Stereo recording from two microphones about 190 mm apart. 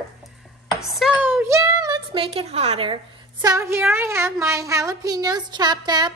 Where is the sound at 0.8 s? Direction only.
Centre (ahead or behind).